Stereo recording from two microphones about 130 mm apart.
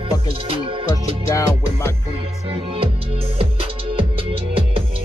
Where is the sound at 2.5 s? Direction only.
45° right (ahead or behind).